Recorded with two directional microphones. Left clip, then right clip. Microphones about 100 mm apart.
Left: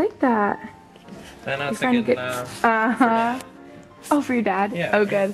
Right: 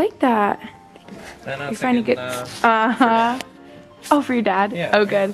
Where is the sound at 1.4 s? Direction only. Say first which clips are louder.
Left 1 dB; 15° left (ahead or behind).